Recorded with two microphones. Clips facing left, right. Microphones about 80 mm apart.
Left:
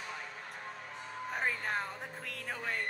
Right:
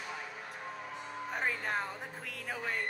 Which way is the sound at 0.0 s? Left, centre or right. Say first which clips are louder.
Right 1 dB; centre.